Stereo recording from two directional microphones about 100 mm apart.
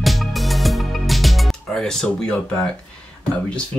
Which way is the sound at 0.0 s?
Centre (ahead or behind).